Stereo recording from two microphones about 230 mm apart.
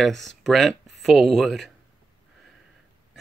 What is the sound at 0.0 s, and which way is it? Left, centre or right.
Speech, centre.